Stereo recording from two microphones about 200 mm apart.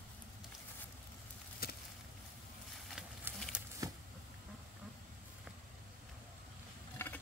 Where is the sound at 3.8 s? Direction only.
15° right (ahead or behind).